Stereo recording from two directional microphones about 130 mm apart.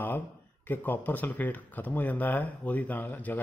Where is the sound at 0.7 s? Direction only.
15° left (ahead or behind).